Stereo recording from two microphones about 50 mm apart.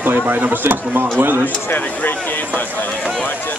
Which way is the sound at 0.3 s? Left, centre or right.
Right.